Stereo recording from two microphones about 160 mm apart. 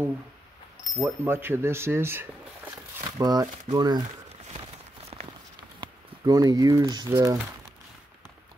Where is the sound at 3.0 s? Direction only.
25° right (ahead or behind).